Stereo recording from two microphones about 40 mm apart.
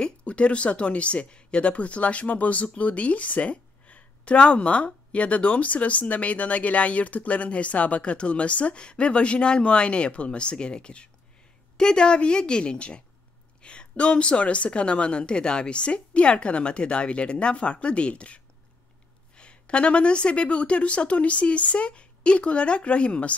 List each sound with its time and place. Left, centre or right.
0.0 s a woman's voice: left